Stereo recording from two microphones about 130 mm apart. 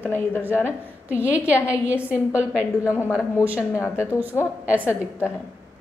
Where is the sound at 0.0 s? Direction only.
15° left (ahead or behind).